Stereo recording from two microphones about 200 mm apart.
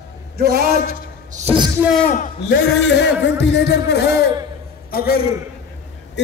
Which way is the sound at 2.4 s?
60° left (ahead or behind).